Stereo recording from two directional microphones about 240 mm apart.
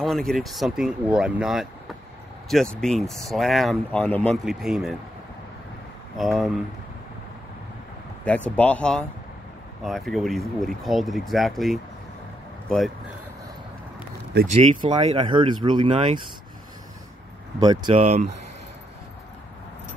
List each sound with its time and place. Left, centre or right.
0.0 s speech: centre
6.1 s speech: centre
8.5 s speech: centre
14.5 s speech: right
17.6 s speech: centre